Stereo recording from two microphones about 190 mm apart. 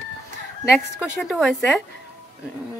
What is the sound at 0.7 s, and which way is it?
Speech, centre (ahead or behind).